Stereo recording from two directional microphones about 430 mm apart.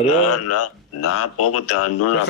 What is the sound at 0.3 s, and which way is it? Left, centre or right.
Speech, left.